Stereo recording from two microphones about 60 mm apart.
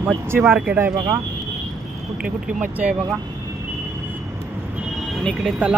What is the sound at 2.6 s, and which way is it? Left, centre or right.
Speech, right.